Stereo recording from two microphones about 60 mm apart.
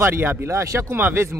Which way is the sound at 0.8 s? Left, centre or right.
Right.